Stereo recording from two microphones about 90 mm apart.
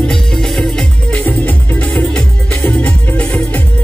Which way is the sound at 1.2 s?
15° left (ahead or behind).